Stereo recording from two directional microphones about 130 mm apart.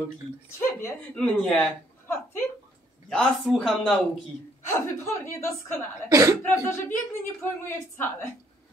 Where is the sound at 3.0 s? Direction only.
5° left (ahead or behind).